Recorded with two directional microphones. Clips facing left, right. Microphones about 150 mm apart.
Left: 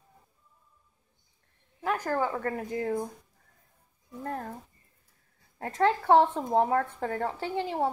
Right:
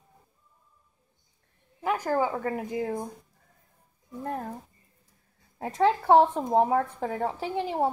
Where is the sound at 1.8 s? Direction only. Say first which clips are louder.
Right 2 dB; 10° right (ahead or behind).